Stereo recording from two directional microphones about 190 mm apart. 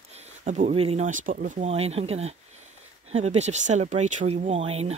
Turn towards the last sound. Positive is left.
turn(degrees=-35)  # may be behind; listen again after turning